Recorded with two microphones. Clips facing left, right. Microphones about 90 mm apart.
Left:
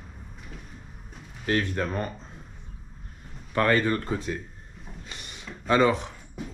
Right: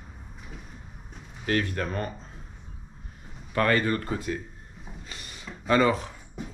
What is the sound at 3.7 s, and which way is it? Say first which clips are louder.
Speech: left 1 dB; 5° right (ahead or behind).